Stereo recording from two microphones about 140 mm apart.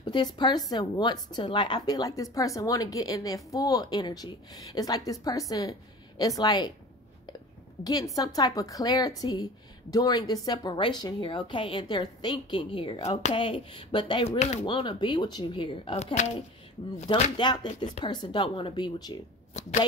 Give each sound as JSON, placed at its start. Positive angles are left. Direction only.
{"t": 0.0, "sound": "a woman's voice", "side_deg": 30}
{"t": 7.8, "sound": "a woman's voice", "side_deg": 25}
{"t": 14.4, "sound": "speech", "side_deg": 55}
{"t": 14.7, "sound": "speech", "side_deg": 35}
{"t": 17.1, "sound": "speech", "side_deg": 35}
{"t": 19.6, "sound": "speech", "side_deg": 50}